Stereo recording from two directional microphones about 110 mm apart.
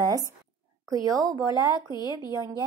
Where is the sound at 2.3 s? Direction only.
30° right (ahead or behind).